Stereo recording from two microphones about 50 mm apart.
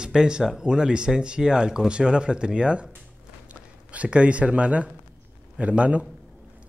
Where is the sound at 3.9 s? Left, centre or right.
Right.